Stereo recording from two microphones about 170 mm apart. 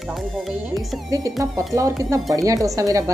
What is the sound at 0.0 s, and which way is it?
A woman's voice, centre (ahead or behind).